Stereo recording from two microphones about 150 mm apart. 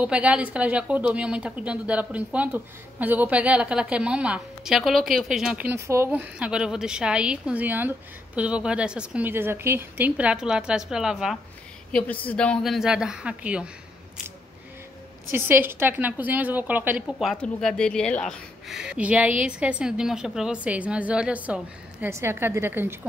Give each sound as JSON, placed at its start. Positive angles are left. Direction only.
{"t": 0.0, "sound": "speech", "side_deg": -10}
{"t": 5.7, "sound": "speech", "side_deg": -20}
{"t": 12.3, "sound": "speech", "side_deg": 5}
{"t": 15.3, "sound": "speech", "side_deg": -15}
{"t": 17.2, "sound": "speech", "side_deg": 0}